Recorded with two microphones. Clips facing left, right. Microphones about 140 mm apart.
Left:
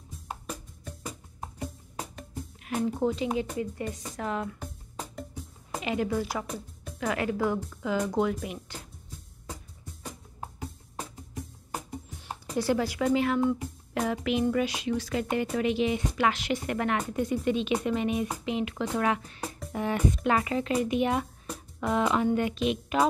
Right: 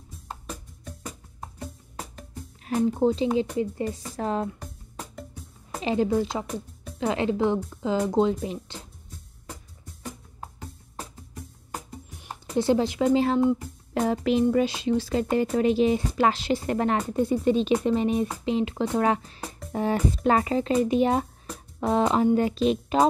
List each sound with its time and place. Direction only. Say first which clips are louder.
0.3 s music: even; 5° left (ahead or behind)
2.6 s speech: right 5 dB; 30° right (ahead or behind)
4.6 s music: even; centre (ahead or behind)
5.8 s speech: right 5 dB; 30° right (ahead or behind)
12.5 s speech: right 5 dB; 25° right (ahead or behind)